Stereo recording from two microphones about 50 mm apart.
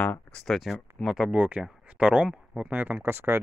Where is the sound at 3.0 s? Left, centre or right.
Right.